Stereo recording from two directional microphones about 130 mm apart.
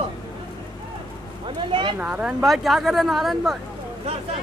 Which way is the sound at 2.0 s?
10° right (ahead or behind).